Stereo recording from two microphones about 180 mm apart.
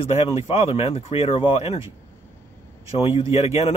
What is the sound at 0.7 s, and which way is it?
Speech, 35° left (ahead or behind).